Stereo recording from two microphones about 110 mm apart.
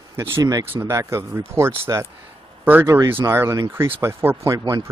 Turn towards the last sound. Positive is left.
turn(degrees=-25)  # may be behind; listen again after turning